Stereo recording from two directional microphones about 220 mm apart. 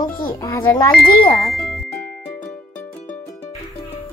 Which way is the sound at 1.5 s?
5° left (ahead or behind).